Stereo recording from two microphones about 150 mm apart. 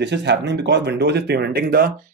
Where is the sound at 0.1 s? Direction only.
90° right.